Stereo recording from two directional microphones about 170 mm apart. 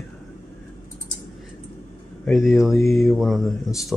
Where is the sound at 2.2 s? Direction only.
Centre (ahead or behind).